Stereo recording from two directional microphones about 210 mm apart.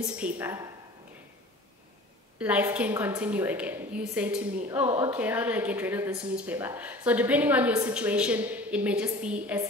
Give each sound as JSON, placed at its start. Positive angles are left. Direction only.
{"t": 0.0, "sound": "a woman's voice", "side_deg": -5}
{"t": 2.3, "sound": "a woman's voice", "side_deg": -5}